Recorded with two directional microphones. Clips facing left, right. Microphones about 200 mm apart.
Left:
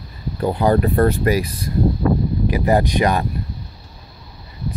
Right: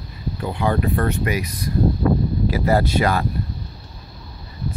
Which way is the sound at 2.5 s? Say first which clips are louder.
Left 2 dB; 15° left (ahead or behind).